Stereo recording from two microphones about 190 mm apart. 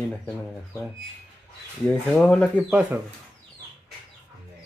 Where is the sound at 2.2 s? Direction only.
5° left (ahead or behind).